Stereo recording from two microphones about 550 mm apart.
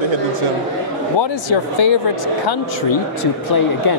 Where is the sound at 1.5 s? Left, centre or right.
Left.